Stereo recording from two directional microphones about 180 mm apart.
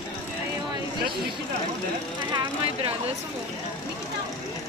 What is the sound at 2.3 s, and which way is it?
Vehicle, 25° right (ahead or behind).